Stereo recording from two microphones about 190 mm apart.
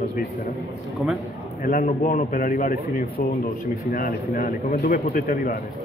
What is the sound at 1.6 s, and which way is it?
A man's voice, 45° left (ahead or behind).